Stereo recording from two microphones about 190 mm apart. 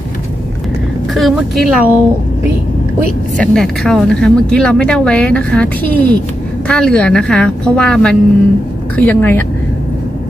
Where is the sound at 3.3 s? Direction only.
Centre (ahead or behind).